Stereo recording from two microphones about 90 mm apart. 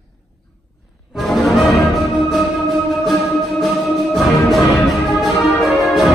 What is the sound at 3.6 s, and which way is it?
Music, centre (ahead or behind).